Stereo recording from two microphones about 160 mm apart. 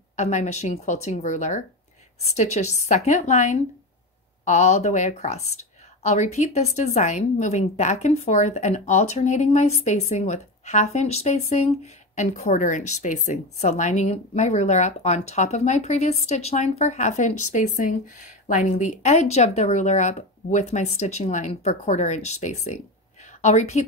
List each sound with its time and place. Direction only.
0.1 s a woman's voice: 45° left (ahead or behind)